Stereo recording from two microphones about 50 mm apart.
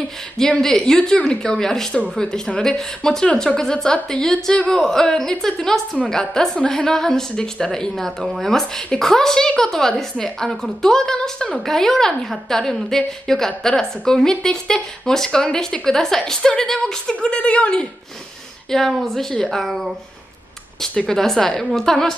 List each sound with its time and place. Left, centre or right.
0.6 s a woman's voice: centre
18.7 s a woman's voice: centre
19.6 s speech: centre
20.9 s a woman's voice: centre